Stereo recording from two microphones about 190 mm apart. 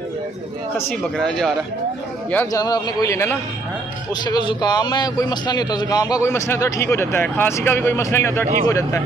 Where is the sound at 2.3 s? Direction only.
15° left (ahead or behind).